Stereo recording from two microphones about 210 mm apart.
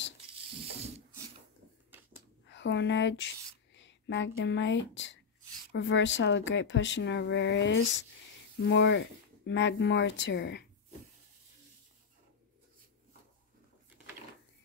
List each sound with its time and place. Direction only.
2.4 s speech: 60° left (ahead or behind)
3.7 s a sound: 60° left (ahead or behind)
4.4 s speech: 60° left (ahead or behind)